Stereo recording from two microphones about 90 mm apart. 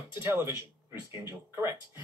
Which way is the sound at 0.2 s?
25° right (ahead or behind).